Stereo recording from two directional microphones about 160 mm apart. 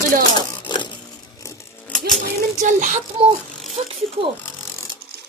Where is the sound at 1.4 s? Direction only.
20° left (ahead or behind).